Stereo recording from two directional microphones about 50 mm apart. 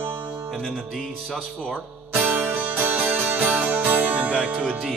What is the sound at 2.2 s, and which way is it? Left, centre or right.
Music, right.